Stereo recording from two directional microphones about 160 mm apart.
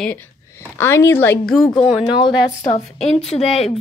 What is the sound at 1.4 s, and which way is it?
Speech, centre (ahead or behind).